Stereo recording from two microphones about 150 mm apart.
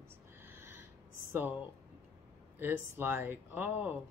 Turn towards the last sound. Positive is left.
turn(degrees=-15)  # may be behind; listen again after turning